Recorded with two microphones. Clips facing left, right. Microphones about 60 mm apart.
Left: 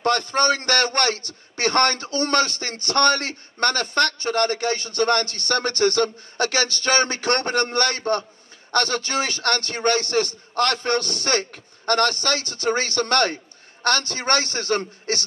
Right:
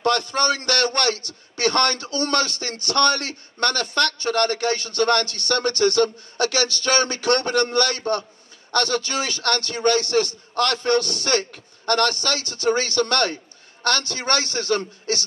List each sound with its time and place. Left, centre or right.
0.0 s a man's voice: left